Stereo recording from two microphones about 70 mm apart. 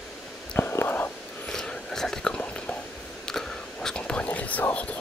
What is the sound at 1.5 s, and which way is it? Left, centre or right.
Whispering, centre.